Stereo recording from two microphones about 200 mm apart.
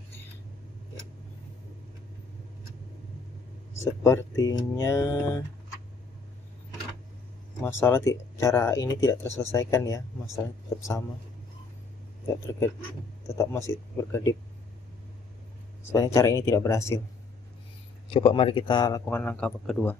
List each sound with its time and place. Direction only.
3.8 s a man's voice: 15° left (ahead or behind)
7.6 s a man's voice: 10° left (ahead or behind)
13.4 s a man's voice: 15° left (ahead or behind)
15.9 s a man's voice: 15° left (ahead or behind)
18.1 s a man's voice: 25° left (ahead or behind); by 20.0 s 5° left (ahead or behind)